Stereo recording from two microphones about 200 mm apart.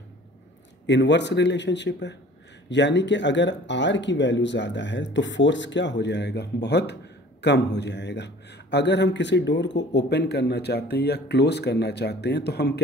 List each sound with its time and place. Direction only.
0.8 s speech: 60° left (ahead or behind)